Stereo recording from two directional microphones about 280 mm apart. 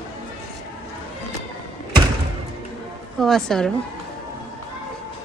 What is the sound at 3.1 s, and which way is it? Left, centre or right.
Speech, centre.